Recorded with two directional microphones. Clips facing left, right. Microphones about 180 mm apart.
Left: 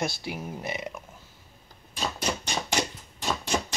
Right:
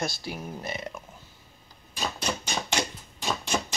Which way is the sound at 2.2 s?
5° left (ahead or behind).